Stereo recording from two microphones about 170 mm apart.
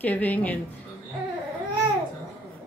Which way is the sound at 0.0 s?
10° left (ahead or behind).